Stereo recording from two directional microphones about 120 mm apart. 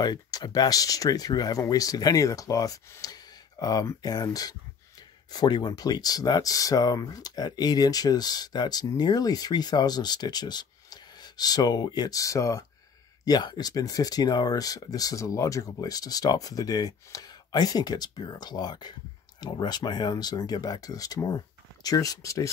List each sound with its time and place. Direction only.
0.0 s speech: 35° left (ahead or behind)